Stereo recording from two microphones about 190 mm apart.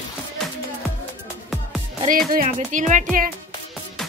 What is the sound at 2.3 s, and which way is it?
Speech, 45° right (ahead or behind).